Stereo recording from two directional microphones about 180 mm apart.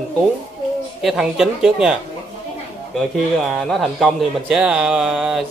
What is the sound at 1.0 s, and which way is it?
A man's voice, 5° right (ahead or behind).